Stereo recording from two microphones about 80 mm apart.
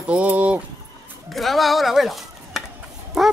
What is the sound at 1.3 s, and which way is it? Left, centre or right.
Speech, centre.